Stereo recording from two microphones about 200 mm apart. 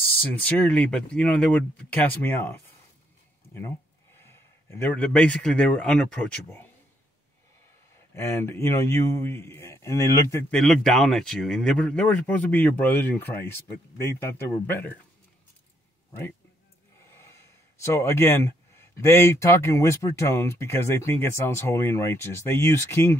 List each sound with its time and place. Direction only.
0.5 s speech: 10° left (ahead or behind)
4.2 s speech: 10° left (ahead or behind)
8.1 s speech: 10° left (ahead or behind)
10.6 s speech: 5° left (ahead or behind)
17.0 s speech: 15° left (ahead or behind)